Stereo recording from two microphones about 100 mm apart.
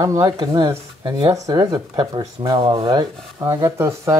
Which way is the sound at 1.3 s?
40° right (ahead or behind).